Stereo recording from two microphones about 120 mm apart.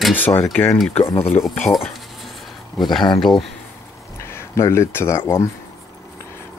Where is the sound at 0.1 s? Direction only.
15° left (ahead or behind).